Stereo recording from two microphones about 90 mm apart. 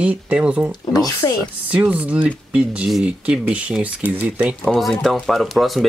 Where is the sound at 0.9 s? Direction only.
45° left (ahead or behind).